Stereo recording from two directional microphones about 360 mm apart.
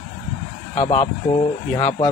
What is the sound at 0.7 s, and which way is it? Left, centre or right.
A man's voice, centre.